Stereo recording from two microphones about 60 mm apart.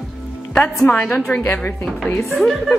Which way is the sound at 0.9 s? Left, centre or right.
Left.